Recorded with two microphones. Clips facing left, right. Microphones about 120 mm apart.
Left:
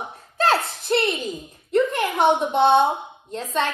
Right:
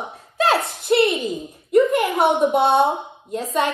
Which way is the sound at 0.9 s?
10° right (ahead or behind).